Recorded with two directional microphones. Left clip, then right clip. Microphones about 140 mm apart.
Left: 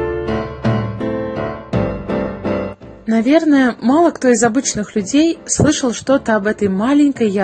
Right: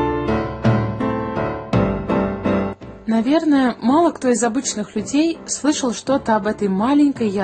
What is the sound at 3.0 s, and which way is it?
A woman's voice, 20° left (ahead or behind).